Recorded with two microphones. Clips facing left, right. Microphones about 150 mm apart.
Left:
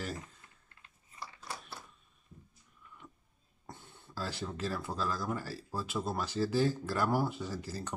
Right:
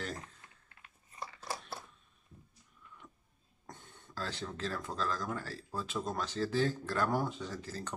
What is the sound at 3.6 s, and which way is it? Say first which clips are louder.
Speech: left 1 dB; 10° left (ahead or behind).